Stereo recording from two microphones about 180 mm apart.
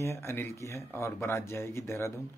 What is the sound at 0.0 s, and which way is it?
Speech, 15° left (ahead or behind).